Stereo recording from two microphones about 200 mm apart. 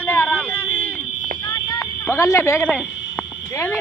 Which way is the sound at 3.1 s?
10° left (ahead or behind).